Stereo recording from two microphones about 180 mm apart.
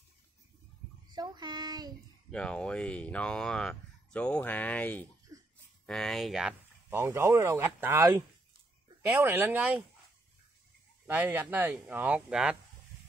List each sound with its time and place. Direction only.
1.1 s child singing: 25° right (ahead or behind)
2.3 s speech: 5° left (ahead or behind)
5.3 s a sound: 20° right (ahead or behind)
5.9 s speech: centre (ahead or behind)
6.9 s speech: 15° right (ahead or behind)
11.1 s speech: 10° right (ahead or behind)